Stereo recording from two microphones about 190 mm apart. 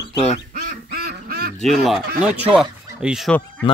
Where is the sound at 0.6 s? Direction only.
55° right (ahead or behind).